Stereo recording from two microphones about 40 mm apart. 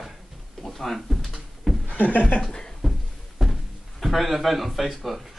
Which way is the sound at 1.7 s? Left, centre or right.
Centre.